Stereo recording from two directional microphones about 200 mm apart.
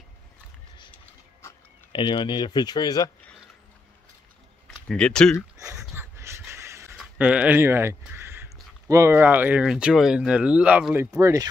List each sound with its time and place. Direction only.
1.9 s speech: 25° left (ahead or behind)
4.6 s speech: 5° left (ahead or behind)
5.6 s dog: 15° right (ahead or behind)
7.2 s speech: 10° right (ahead or behind)
11.1 s speech: 15° right (ahead or behind)